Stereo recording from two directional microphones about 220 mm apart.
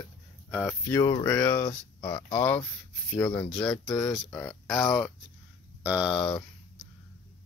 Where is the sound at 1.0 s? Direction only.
15° left (ahead or behind).